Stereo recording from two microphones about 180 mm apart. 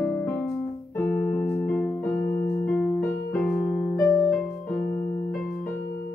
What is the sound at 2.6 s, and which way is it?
Music, 10° left (ahead or behind).